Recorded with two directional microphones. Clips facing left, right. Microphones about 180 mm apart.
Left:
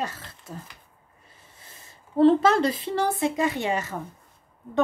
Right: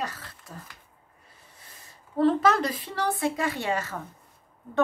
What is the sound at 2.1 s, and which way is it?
Speech, 25° left (ahead or behind).